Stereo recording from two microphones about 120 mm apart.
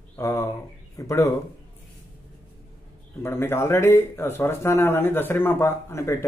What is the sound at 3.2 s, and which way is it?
Mantra, 20° left (ahead or behind).